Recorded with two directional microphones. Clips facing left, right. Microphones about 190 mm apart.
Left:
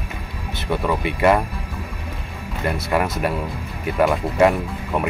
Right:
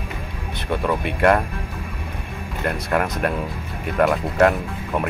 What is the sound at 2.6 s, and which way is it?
Speech, 5° left (ahead or behind).